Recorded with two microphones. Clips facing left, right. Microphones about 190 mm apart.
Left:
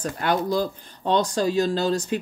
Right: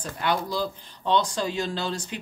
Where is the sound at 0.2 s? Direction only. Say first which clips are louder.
Left 3 dB; 45° left (ahead or behind).